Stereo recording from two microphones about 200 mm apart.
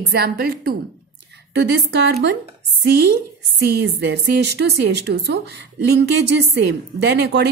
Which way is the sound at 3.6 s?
55° right (ahead or behind).